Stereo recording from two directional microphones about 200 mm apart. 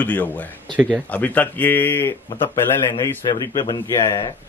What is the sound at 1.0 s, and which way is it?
Speech, 10° left (ahead or behind).